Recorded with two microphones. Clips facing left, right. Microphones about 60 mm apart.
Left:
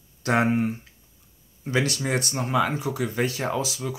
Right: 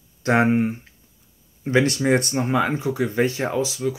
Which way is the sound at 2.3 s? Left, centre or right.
Right.